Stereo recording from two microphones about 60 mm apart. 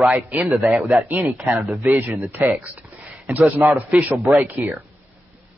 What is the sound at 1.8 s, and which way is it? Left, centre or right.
Speech, right.